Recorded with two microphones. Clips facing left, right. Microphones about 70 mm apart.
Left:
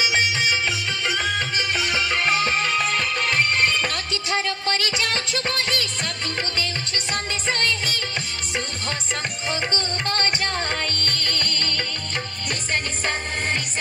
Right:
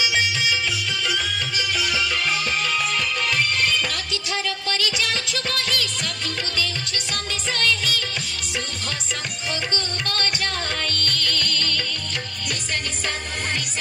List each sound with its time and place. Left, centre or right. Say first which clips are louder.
0.0 s music: left 1 dB; left
10.0 s music: left 3 dB; left